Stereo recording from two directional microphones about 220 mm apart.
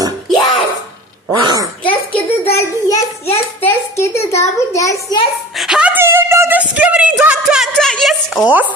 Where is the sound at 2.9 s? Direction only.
30° left (ahead or behind).